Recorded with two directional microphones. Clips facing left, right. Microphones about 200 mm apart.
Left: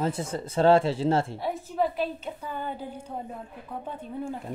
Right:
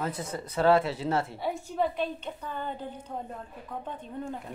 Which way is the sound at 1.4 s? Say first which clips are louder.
Left 2 dB; centre (ahead or behind).